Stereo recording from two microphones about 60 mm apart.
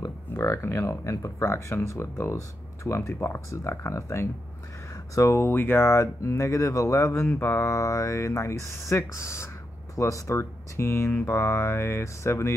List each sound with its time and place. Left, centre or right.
0.3 s speech: left
3.3 s speech: left
7.2 s mantra: left
7.6 s speech: left